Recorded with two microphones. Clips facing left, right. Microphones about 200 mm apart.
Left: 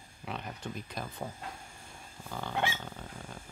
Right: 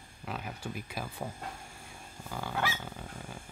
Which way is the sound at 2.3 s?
5° right (ahead or behind).